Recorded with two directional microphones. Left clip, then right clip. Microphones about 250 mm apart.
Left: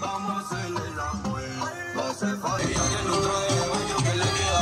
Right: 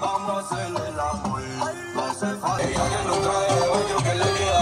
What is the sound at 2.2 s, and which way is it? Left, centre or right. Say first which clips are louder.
Music: right 3 dB; centre.